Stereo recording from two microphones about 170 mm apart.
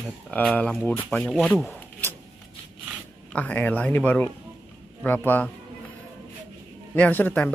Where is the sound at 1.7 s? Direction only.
10° left (ahead or behind).